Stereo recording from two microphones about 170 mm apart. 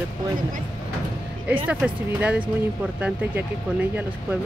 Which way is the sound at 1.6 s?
10° right (ahead or behind).